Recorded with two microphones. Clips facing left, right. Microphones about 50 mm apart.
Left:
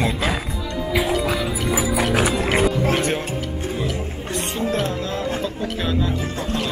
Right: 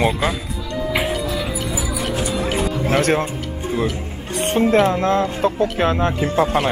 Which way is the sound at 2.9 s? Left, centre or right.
Right.